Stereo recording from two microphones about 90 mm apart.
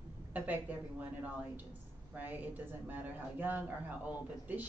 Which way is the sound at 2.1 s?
20° right (ahead or behind).